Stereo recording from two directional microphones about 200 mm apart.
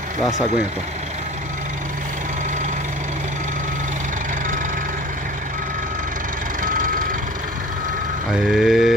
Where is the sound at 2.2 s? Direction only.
40° right (ahead or behind).